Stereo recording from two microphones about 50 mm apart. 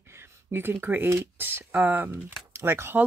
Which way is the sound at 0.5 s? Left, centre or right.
Right.